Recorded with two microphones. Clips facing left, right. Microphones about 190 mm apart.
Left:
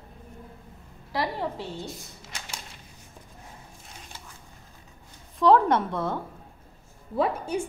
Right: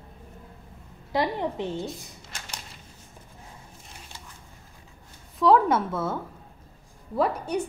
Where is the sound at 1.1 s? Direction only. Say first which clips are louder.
Right 3 dB; 20° right (ahead or behind).